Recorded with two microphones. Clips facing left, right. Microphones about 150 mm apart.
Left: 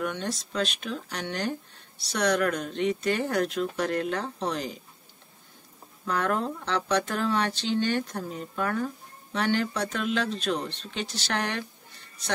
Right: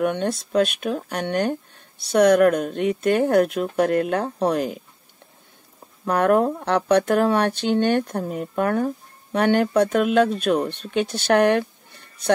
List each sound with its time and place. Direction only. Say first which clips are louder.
0.0 s speech: right 9 dB; 55° right (ahead or behind)
6.0 s speech: right 9 dB; 60° right (ahead or behind)